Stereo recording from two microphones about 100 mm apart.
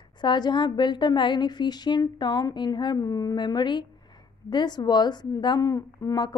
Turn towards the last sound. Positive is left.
turn(degrees=40)  # may be behind; listen again after turning